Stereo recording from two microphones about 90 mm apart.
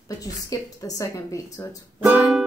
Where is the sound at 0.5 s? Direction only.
40° left (ahead or behind).